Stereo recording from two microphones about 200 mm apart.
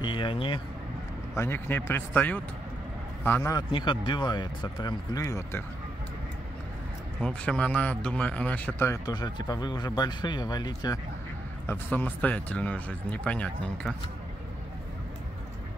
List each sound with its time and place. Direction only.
0.0 s speech: 25° left (ahead or behind)
1.3 s speech: 10° left (ahead or behind)
7.2 s speech: 5° left (ahead or behind)
11.6 s speech: 10° left (ahead or behind)